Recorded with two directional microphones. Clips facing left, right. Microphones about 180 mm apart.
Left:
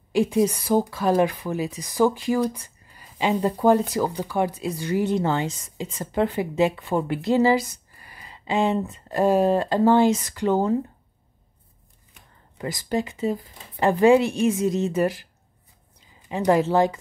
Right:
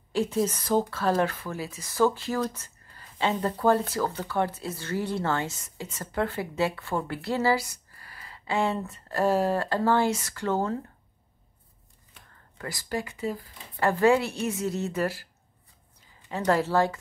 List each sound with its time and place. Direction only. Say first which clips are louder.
0.1 s speech: left 6 dB; 15° left (ahead or behind)
12.1 s speech: left 1 dB; 20° left (ahead or behind)
16.3 s speech: left 5 dB; 15° left (ahead or behind)